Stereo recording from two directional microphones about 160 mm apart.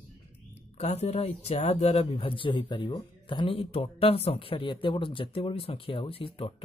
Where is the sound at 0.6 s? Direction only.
40° left (ahead or behind).